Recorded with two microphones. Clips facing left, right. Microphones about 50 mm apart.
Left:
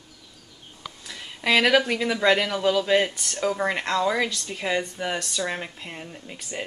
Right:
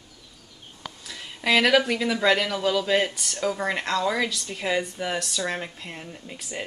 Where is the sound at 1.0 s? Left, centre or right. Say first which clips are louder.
Even; centre.